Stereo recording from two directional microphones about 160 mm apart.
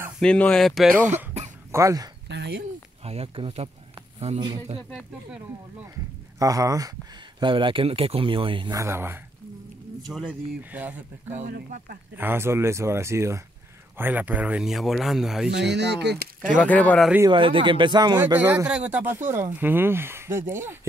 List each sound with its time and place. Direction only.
0.2 s speech: 5° left (ahead or behind)
1.7 s speech: 20° right (ahead or behind)
2.2 s speech: 90° right
3.0 s speech: 40° right (ahead or behind)
6.4 s speech: 20° right (ahead or behind)
8.7 s speech: 15° right (ahead or behind)
10.6 s speech: 10° right (ahead or behind)
15.5 s speech: 90° right
16.6 s speech: 10° left (ahead or behind)
17.3 s speech: 30° right (ahead or behind)
18.2 s speech: 10° right (ahead or behind)